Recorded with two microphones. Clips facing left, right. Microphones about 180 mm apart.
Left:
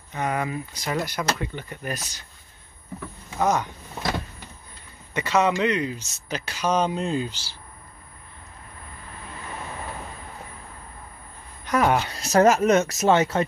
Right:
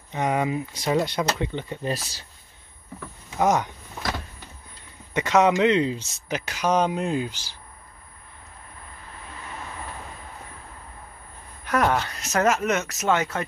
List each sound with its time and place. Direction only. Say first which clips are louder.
0.1 s speech: right 3 dB; 20° right (ahead or behind)
3.3 s speech: right 1 dB; 20° right (ahead or behind)
5.1 s speech: right 2 dB; 20° right (ahead or behind)
6.2 s speech: right 1 dB; 15° right (ahead or behind)
11.6 s a sound: left 1 dB; centre (ahead or behind)
12.1 s speech: left 5 dB; 35° left (ahead or behind)